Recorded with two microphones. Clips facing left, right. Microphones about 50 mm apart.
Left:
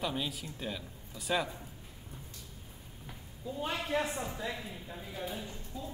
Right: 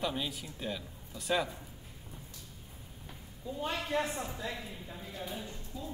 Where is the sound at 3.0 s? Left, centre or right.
Centre.